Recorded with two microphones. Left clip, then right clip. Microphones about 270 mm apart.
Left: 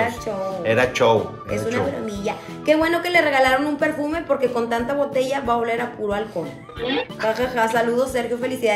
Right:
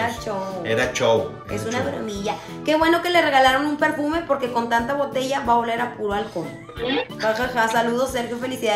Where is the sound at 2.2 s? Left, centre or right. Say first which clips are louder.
Left 5 dB; centre.